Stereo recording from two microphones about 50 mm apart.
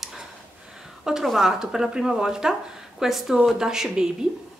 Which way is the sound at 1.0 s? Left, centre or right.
Centre.